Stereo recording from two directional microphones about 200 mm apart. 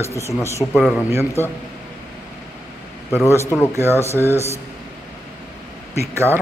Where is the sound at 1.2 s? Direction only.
10° left (ahead or behind).